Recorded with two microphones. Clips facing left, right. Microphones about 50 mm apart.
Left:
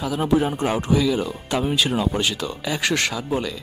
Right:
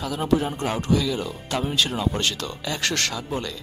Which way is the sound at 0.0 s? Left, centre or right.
Centre.